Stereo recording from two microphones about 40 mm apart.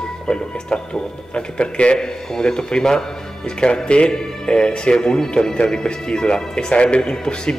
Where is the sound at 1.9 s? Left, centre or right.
Centre.